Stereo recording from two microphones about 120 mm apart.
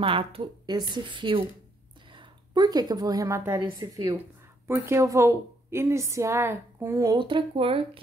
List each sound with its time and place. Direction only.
0.0 s a woman's voice: 50° right (ahead or behind); by 7.2 s 25° right (ahead or behind)
7.2 s speech: 45° right (ahead or behind)